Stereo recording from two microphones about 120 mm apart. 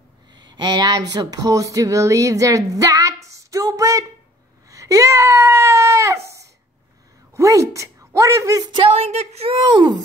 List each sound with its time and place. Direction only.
0.3 s speech: 40° right (ahead or behind)
8.8 s speech: 55° right (ahead or behind)
9.6 s speech: 40° right (ahead or behind)